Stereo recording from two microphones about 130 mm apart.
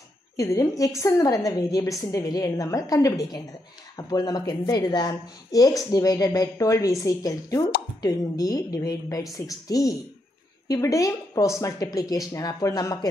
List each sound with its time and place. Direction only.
0.4 s a woman's voice: 25° left (ahead or behind)